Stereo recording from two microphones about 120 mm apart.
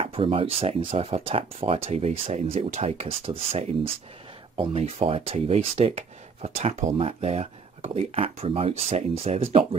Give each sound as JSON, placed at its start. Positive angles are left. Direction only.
{"t": 0.0, "sound": "speech", "side_deg": -50}
{"t": 7.0, "sound": "speech", "side_deg": -55}